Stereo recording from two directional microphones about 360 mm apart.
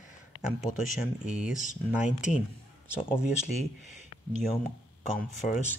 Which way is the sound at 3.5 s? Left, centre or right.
Centre.